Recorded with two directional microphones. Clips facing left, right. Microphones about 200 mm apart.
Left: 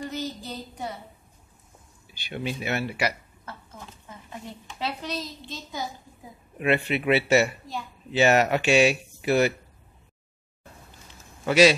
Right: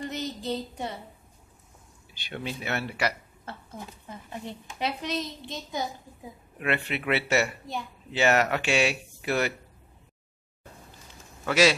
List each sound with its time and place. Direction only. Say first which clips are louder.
0.1 s child singing: right 2 dB; 20° right (ahead or behind)
2.1 s speech: left 3 dB; 10° left (ahead or behind)
4.7 s a woman's voice: right 1 dB; 20° right (ahead or behind)
6.6 s speech: left 5 dB; 15° left (ahead or behind)
11.4 s speech: left 4 dB; 15° left (ahead or behind)